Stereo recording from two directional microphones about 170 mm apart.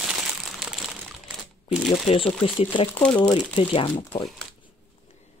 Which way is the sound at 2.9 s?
5° left (ahead or behind).